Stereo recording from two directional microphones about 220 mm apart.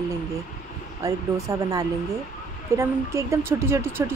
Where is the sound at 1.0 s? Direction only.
15° right (ahead or behind).